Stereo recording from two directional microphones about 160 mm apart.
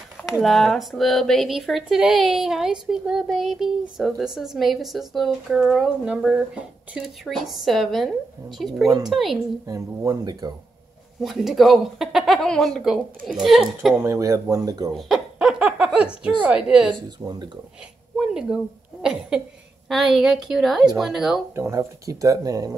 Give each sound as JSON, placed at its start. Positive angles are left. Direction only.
{"t": 0.2, "sound": "speech", "side_deg": 0}
{"t": 9.7, "sound": "speech", "side_deg": -20}
{"t": 11.1, "sound": "speech", "side_deg": 0}
{"t": 13.9, "sound": "speech", "side_deg": -20}
{"t": 15.0, "sound": "a sound", "side_deg": 0}
{"t": 16.4, "sound": "speech", "side_deg": -5}
{"t": 17.2, "sound": "speech", "side_deg": -25}
{"t": 18.1, "sound": "speech", "side_deg": -5}
{"t": 19.9, "sound": "speech", "side_deg": 0}
{"t": 21.5, "sound": "speech", "side_deg": -20}